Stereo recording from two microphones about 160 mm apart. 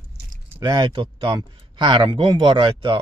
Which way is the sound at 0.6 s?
25° right (ahead or behind).